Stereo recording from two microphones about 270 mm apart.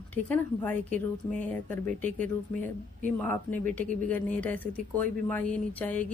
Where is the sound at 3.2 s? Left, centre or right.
Centre.